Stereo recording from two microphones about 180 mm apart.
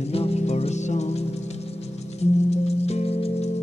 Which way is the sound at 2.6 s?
35° left (ahead or behind).